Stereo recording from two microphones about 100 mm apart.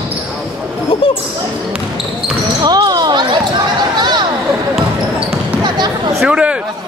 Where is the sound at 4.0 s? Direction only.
45° right (ahead or behind).